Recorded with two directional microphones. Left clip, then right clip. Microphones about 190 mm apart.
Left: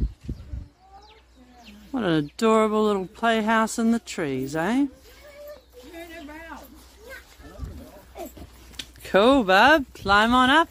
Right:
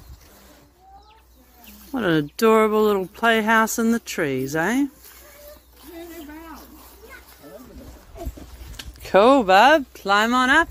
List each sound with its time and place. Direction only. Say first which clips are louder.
1.9 s speech: right 3 dB; centre (ahead or behind)
9.0 s speech: right 4 dB; 10° left (ahead or behind)